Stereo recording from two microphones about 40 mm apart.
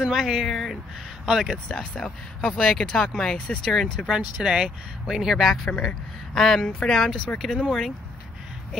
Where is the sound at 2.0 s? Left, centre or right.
Centre.